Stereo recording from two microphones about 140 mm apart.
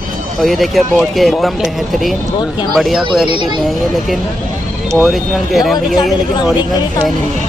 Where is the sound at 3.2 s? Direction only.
35° right (ahead or behind).